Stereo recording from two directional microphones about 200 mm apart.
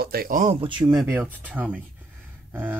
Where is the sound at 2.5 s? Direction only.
10° right (ahead or behind).